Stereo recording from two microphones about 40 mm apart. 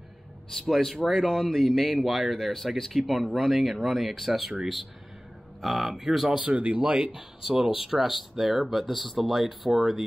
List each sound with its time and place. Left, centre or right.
0.5 s speech: centre
5.6 s speech: centre
6.2 s speech: right
6.8 s speech: centre